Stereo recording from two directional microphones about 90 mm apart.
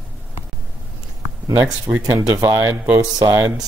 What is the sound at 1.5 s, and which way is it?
Speech, 30° right (ahead or behind).